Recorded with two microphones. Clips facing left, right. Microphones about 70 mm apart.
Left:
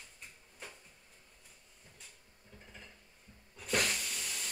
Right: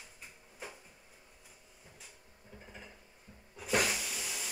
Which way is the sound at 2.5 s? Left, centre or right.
Centre.